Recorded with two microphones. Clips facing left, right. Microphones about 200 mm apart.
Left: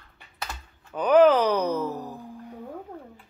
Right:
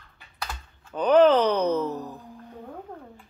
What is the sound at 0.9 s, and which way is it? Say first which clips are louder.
Speech: even; 10° left (ahead or behind).